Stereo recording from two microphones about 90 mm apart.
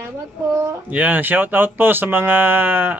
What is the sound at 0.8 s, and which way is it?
Speech, 15° right (ahead or behind).